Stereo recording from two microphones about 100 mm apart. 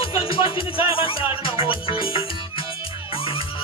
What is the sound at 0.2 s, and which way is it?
Music, 60° left (ahead or behind).